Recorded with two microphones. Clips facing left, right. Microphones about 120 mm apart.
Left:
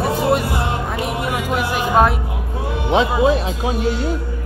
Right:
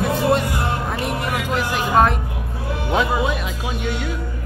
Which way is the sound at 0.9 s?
20° left (ahead or behind).